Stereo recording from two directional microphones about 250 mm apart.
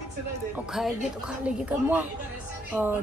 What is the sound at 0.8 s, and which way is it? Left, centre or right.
A woman's voice, centre.